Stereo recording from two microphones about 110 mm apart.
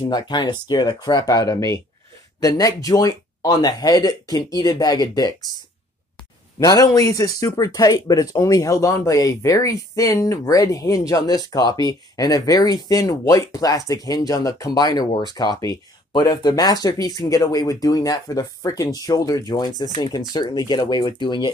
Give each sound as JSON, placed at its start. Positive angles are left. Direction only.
{"t": 0.1, "sound": "speech", "side_deg": 45}
{"t": 6.6, "sound": "speech", "side_deg": 35}